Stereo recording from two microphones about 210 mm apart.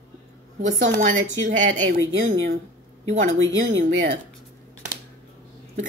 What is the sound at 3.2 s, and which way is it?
Speech, 65° right (ahead or behind).